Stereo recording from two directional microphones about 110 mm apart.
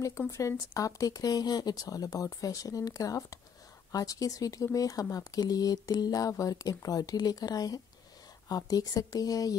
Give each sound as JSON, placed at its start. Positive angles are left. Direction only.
{"t": 0.3, "sound": "speech", "side_deg": 30}